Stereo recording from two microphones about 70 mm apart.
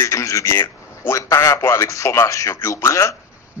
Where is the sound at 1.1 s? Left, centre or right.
Left.